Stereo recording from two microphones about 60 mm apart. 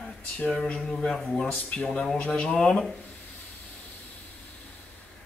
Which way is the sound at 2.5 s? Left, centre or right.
Centre.